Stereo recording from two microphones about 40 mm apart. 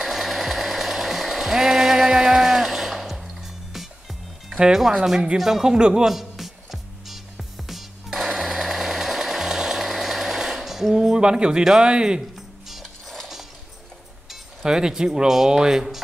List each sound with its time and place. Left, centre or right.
0.0 s sewing machine: centre
5.0 s speech: centre
5.8 s speech: right
6.0 s music: centre
11.1 s speech: right
12.8 s music: centre
14.3 s speech: centre